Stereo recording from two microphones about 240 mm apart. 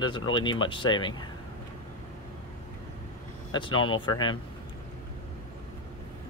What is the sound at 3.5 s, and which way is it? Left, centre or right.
Speech, centre.